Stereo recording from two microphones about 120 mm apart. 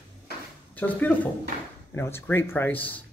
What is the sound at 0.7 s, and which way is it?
Speech, 15° left (ahead or behind).